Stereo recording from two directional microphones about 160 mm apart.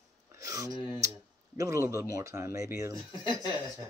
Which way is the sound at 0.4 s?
20° right (ahead or behind).